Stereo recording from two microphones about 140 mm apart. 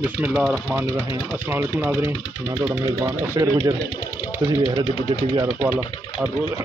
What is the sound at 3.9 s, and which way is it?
Speech, 30° left (ahead or behind).